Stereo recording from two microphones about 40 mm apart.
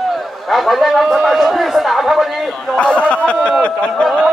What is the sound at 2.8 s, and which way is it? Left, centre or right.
Speech, left.